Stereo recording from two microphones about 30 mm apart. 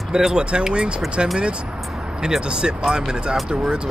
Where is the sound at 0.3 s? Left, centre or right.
Right.